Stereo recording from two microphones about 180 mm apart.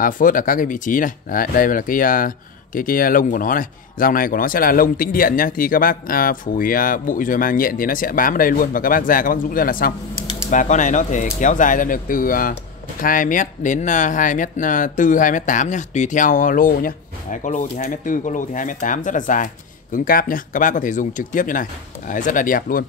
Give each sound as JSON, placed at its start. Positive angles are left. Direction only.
{"t": 0.0, "sound": "speech", "side_deg": 50}